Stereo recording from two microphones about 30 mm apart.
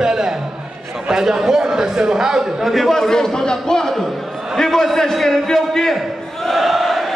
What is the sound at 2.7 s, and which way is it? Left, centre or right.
A man's voice, centre.